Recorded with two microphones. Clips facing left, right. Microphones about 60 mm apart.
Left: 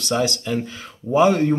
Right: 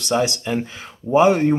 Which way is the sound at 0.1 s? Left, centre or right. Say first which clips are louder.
Right 1 dB; right.